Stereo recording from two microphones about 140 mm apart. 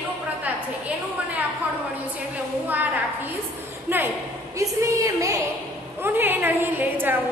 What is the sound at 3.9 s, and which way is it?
A woman's voice, 15° right (ahead or behind).